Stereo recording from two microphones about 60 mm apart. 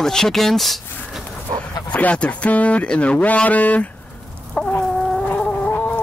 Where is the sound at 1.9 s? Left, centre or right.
Left.